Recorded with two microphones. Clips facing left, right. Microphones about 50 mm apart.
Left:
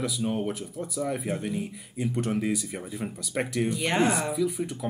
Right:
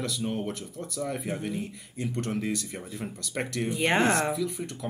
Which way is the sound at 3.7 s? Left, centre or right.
Right.